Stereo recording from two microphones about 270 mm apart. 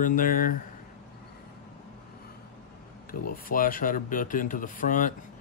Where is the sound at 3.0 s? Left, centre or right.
Left.